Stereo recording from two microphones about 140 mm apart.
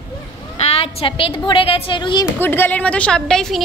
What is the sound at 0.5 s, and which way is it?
A woman's voice, 45° left (ahead or behind).